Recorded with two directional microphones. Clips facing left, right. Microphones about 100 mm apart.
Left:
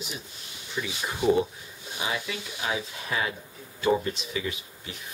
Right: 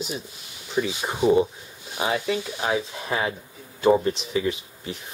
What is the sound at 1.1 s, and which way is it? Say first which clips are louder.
Speech: right 4 dB; 20° right (ahead or behind).